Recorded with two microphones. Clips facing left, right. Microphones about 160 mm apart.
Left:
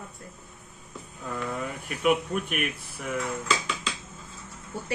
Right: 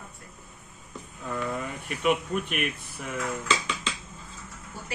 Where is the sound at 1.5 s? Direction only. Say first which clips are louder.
Even; 5° left (ahead or behind).